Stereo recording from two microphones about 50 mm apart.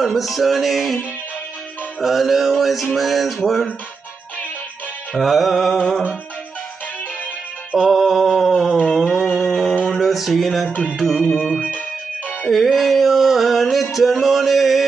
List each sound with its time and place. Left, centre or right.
0.0 s music: centre
2.0 s music: centre
5.1 s music: centre
7.7 s music: centre
8.0 s music: centre
8.9 s a sound: centre
9.3 s mantra: centre
9.9 s music: centre
10.7 s music: left
11.2 s music: centre
13.9 s a sound: centre